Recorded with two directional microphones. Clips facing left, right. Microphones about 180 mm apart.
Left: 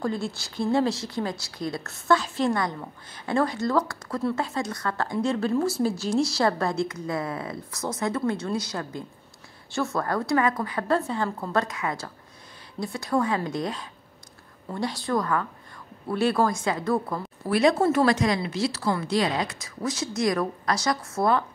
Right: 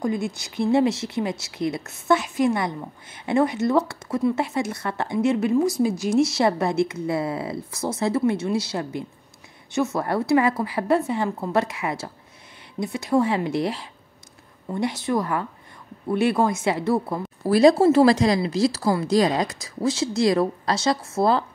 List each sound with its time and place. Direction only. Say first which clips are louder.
0.0 s a woman's voice: right 3 dB; 15° right (ahead or behind)